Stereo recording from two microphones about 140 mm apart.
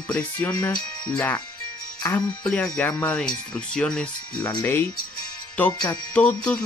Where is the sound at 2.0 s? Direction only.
20° left (ahead or behind).